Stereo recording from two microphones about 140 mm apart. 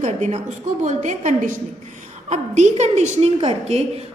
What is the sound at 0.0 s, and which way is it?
A woman's voice, 60° right (ahead or behind).